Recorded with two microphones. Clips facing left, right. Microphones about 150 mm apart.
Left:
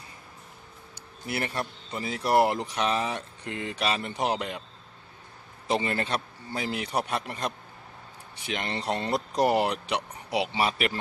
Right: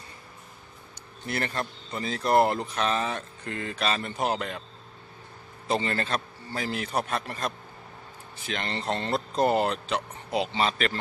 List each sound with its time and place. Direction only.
1.2 s speech: 10° left (ahead or behind)
5.7 s speech: 15° left (ahead or behind)